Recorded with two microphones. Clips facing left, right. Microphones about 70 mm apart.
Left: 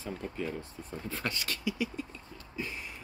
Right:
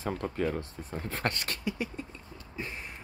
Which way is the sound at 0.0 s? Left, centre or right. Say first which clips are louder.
Right 6 dB; right.